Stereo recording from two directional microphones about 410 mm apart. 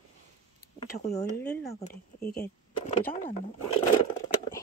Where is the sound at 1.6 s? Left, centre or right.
Left.